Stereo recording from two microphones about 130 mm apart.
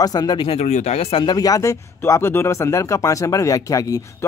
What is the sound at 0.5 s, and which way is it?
Speech, 60° left (ahead or behind).